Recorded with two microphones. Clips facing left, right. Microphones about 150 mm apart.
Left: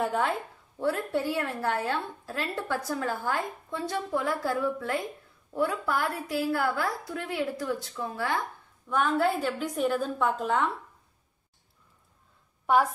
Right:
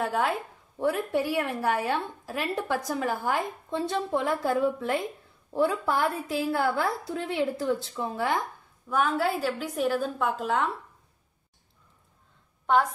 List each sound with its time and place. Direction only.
0.0 s a woman's voice: centre (ahead or behind)
0.7 s a woman's voice: 15° right (ahead or behind)
8.8 s a woman's voice: centre (ahead or behind)